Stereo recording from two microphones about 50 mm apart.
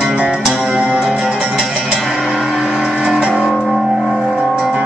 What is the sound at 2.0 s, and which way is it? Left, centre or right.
Music, centre.